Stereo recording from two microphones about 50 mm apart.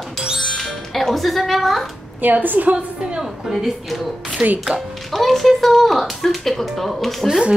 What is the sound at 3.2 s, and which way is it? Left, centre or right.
A woman's voice, centre.